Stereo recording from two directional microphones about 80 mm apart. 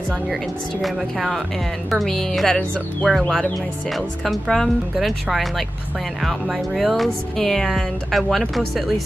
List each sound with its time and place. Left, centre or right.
0.8 s speech: centre